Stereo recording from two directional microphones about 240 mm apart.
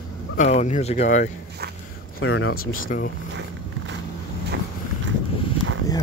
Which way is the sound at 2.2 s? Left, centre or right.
Left.